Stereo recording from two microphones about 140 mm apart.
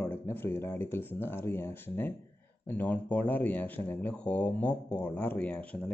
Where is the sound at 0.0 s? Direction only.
15° left (ahead or behind).